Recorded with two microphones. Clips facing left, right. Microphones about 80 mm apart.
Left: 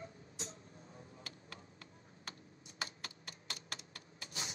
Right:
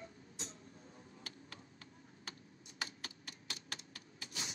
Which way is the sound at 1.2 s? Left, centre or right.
Left.